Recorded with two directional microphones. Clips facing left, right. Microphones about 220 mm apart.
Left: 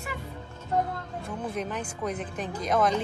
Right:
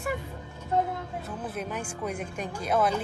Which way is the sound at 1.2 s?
5° right (ahead or behind).